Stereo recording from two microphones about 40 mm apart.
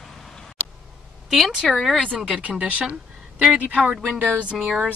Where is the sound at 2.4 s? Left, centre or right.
Right.